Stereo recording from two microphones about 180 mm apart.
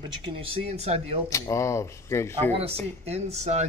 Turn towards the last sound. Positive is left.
turn(degrees=-40)  # may be behind; listen again after turning